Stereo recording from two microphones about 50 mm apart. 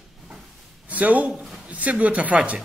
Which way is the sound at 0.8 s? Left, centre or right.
Right.